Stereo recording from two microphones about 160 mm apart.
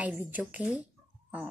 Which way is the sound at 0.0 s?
10° right (ahead or behind).